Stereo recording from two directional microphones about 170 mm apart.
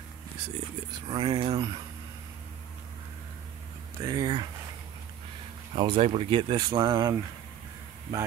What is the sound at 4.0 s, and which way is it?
Speech, 20° right (ahead or behind).